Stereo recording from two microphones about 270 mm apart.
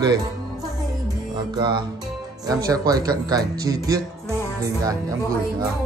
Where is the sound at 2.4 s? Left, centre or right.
Centre.